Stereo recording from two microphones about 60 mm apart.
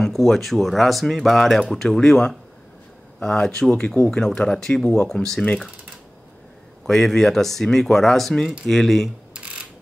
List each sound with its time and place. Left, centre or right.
0.0 s speech: centre
6.8 s speech: centre